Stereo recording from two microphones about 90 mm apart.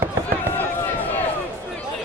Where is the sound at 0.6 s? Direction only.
20° left (ahead or behind).